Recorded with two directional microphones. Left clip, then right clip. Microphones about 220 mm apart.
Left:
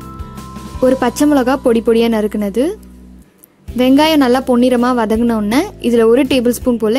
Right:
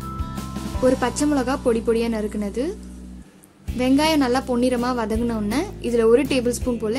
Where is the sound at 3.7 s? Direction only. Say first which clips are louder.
Left 8 dB; 35° left (ahead or behind).